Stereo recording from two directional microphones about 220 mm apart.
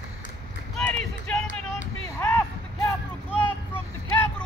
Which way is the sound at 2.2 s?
10° left (ahead or behind).